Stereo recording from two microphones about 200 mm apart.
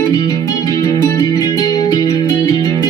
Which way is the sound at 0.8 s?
15° left (ahead or behind).